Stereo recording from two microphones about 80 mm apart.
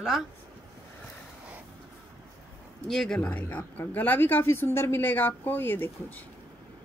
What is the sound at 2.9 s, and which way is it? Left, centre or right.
Speech, centre.